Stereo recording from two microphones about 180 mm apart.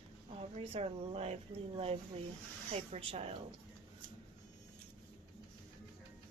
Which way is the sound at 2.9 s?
35° right (ahead or behind).